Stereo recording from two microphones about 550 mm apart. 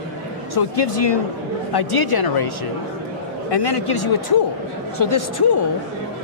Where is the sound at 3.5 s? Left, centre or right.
Left.